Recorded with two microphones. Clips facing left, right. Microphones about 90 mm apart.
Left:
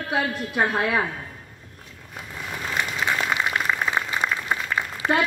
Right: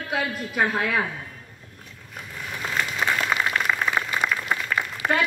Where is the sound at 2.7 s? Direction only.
20° left (ahead or behind).